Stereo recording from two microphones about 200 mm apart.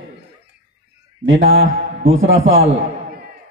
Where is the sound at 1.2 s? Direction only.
70° right (ahead or behind).